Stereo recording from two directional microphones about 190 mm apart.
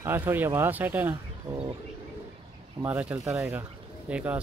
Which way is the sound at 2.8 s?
10° right (ahead or behind).